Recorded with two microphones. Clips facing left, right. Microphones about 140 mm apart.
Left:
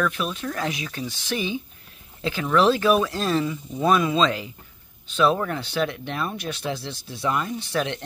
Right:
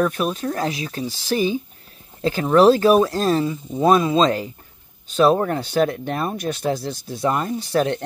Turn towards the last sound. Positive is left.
turn(degrees=-40)  # may be behind; listen again after turning